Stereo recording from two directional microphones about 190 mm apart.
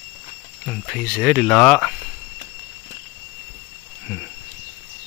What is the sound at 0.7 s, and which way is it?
Speech, centre (ahead or behind).